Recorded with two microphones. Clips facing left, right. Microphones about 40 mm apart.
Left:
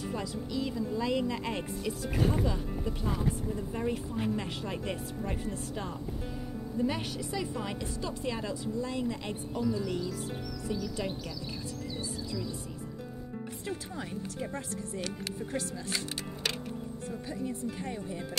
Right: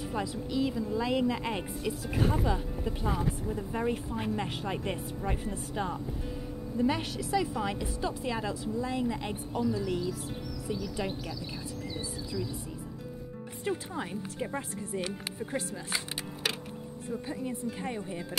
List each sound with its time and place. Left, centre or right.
0.1 s a woman's voice: centre
13.7 s speech: centre
17.3 s speech: right